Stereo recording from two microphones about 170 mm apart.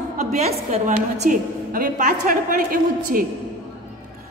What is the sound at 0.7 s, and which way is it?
A woman's voice, 40° right (ahead or behind).